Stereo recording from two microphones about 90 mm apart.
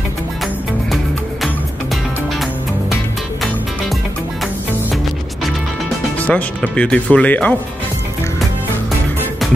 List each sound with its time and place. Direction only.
6.1 s speech: 15° left (ahead or behind)